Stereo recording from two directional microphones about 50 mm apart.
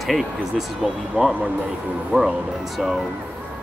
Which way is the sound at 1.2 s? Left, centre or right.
Right.